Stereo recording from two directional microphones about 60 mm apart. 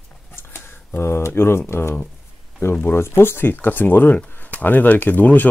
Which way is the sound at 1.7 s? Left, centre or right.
Left.